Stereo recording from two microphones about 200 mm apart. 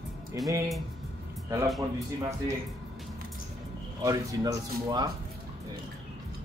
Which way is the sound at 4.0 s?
20° right (ahead or behind).